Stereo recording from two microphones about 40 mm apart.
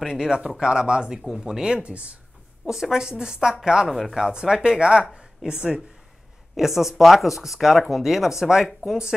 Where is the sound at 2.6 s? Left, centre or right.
Centre.